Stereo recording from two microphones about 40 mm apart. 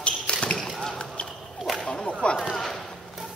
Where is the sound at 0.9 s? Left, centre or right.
Left.